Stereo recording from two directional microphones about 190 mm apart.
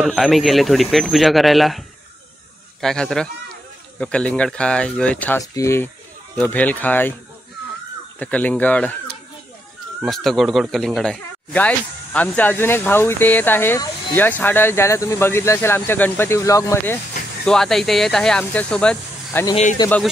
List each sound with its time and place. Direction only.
0.0 s speech: centre (ahead or behind)
8.2 s speech: 10° left (ahead or behind)
10.0 s speech: centre (ahead or behind)
17.5 s speech: centre (ahead or behind)
19.8 s a man's voice: 20° left (ahead or behind)